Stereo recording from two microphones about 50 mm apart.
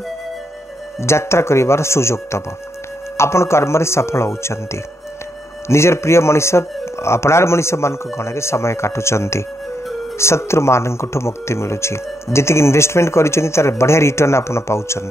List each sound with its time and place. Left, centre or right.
1.0 s a man's voice: left
5.7 s a man's voice: left